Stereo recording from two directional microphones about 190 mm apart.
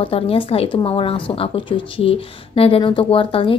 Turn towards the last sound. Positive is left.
turn(degrees=30)  # may be behind; listen again after turning